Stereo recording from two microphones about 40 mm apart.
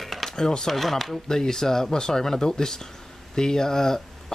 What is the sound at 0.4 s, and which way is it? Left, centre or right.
Speech, centre.